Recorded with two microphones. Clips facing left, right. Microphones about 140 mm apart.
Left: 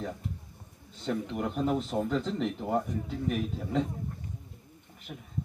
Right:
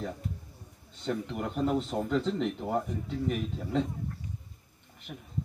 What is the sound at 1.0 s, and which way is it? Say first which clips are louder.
Speech: left 1 dB; centre (ahead or behind).